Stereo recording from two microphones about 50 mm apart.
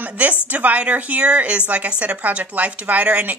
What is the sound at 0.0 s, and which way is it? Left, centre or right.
A woman's voice, right.